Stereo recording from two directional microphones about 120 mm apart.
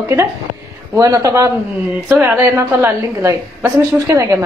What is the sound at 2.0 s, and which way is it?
A woman's voice, 15° right (ahead or behind).